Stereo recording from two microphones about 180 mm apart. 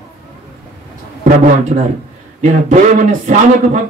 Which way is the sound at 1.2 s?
45° right (ahead or behind).